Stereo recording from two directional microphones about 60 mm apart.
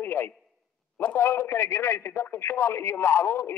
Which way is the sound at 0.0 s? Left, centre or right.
Left.